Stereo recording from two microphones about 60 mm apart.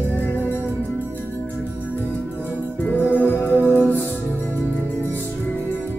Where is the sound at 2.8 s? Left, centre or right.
Left.